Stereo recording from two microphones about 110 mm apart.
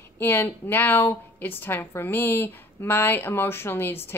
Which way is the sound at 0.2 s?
20° left (ahead or behind).